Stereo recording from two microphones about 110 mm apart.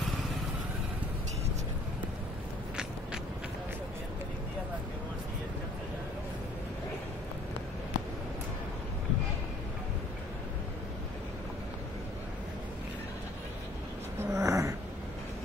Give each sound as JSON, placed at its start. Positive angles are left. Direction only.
{"t": 14.2, "sound": "dog", "side_deg": -30}